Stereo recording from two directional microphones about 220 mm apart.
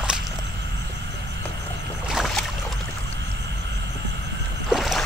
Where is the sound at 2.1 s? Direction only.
Centre (ahead or behind).